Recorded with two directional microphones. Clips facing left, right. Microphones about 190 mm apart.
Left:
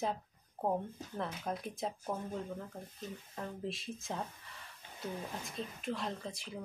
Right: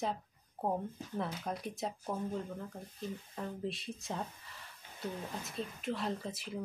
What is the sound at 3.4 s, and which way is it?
Speech, centre (ahead or behind).